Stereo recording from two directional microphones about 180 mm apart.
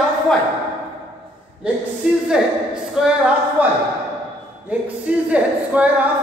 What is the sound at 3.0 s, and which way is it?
Speech, 5° right (ahead or behind).